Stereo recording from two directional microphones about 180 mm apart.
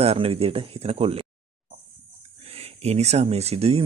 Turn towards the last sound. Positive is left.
turn(degrees=-35)  # may be behind; listen again after turning